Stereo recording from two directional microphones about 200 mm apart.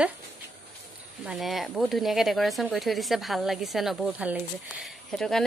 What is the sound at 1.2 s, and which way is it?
Speech, centre (ahead or behind).